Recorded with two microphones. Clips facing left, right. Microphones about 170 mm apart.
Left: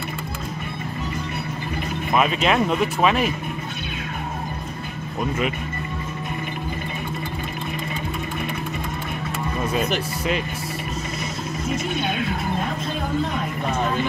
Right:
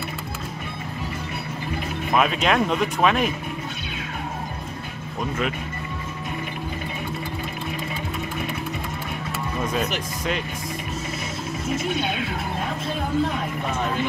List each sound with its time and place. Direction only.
2.1 s speech: centre (ahead or behind)
9.6 s speech: 5° left (ahead or behind)